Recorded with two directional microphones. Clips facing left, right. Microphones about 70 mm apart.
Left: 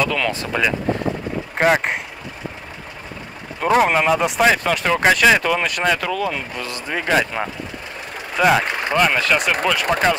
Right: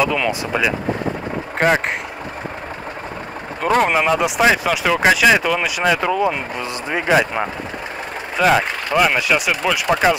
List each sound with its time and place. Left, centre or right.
0.0 s speech: centre
1.6 s speech: centre
3.6 s speech: centre
5.9 s speech: right
8.4 s speech: centre